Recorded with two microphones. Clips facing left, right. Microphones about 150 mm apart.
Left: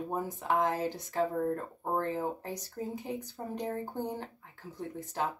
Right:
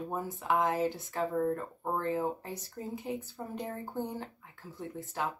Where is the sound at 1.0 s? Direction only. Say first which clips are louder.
Left 1 dB; 15° left (ahead or behind).